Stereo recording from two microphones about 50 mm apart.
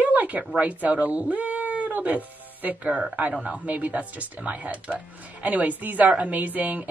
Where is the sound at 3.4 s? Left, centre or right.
Right.